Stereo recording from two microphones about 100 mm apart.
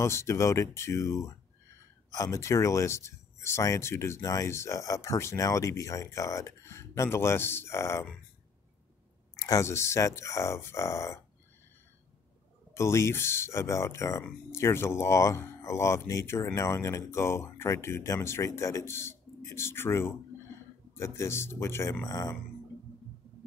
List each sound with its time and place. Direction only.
0.0 s speech: 30° left (ahead or behind)
9.4 s speech: 30° left (ahead or behind)
12.7 s speech: 30° left (ahead or behind)